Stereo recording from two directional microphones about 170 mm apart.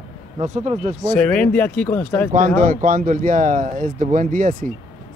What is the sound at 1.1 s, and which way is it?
Speech, 5° left (ahead or behind).